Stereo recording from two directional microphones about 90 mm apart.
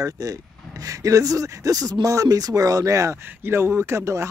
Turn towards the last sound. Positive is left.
turn(degrees=-30)  # may be behind; listen again after turning